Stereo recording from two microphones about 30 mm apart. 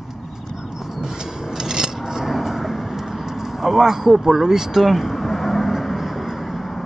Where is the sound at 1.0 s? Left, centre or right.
Right.